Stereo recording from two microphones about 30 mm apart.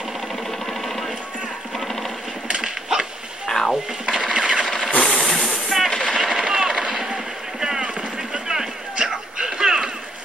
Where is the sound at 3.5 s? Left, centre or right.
Centre.